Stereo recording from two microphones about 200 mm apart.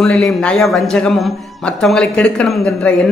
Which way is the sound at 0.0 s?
5° left (ahead or behind).